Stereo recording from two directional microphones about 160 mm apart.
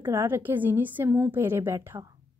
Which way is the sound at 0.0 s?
15° right (ahead or behind).